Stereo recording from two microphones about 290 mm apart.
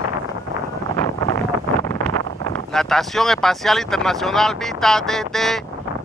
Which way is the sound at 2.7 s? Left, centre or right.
Centre.